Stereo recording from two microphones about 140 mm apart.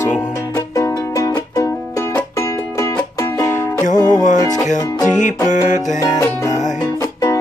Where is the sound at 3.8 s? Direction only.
65° left (ahead or behind).